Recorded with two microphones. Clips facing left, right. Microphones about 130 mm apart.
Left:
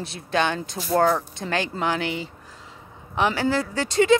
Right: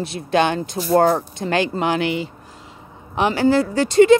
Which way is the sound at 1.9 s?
65° right (ahead or behind).